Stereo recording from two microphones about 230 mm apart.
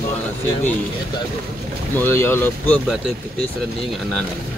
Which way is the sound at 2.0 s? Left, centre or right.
Centre.